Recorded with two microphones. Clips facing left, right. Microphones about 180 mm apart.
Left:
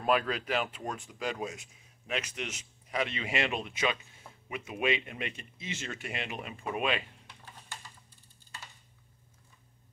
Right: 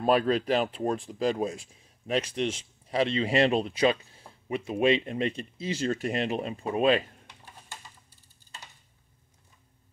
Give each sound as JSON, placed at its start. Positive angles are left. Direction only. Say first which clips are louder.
{"t": 0.0, "sound": "speech", "louder": "right 6 dB", "side_deg": -35}